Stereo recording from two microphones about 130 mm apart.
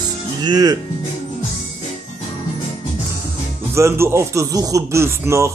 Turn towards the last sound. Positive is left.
turn(degrees=-20)  # may be behind; listen again after turning